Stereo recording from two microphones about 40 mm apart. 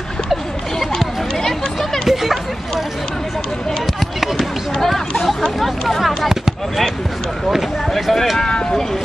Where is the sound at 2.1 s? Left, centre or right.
Centre.